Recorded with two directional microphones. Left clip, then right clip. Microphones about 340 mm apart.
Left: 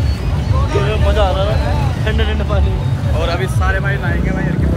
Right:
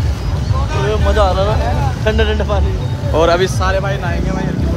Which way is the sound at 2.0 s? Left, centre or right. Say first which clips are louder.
Right 7 dB; right.